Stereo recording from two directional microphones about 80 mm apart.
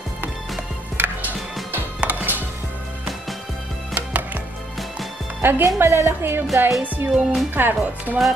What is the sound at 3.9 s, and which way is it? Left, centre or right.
Music, centre.